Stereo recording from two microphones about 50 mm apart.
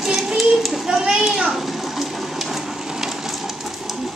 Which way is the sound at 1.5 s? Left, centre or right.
Centre.